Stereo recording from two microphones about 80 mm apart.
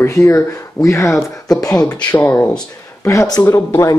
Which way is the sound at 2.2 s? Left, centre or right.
Centre.